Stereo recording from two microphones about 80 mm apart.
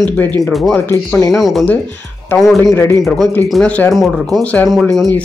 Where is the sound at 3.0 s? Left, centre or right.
Centre.